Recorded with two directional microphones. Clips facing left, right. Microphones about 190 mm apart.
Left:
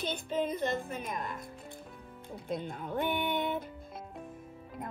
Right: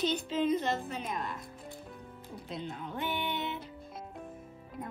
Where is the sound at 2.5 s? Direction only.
50° left (ahead or behind).